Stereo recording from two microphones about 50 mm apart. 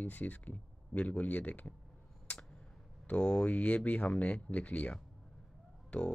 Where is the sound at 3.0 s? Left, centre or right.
Left.